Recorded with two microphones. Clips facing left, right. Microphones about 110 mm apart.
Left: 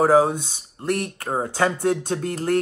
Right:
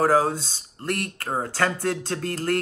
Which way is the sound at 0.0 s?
20° left (ahead or behind).